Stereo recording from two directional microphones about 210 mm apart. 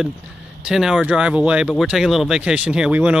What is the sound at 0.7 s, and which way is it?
Speech, centre (ahead or behind).